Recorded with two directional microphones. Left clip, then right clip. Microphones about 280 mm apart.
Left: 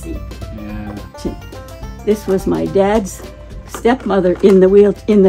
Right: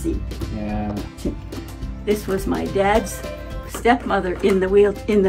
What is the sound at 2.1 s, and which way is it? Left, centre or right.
Speech, left.